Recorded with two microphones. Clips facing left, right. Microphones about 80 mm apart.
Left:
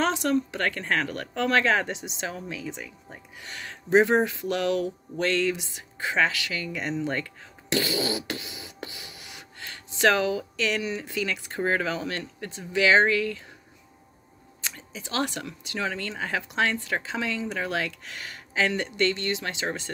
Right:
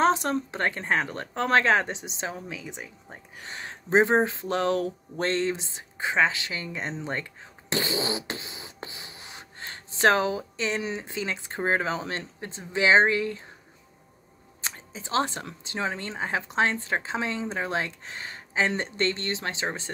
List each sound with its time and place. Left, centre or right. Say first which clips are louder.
0.0 s speech: right 1 dB; right
7.7 s beatboxing: left 1 dB; right
14.6 s speech: right 1 dB; right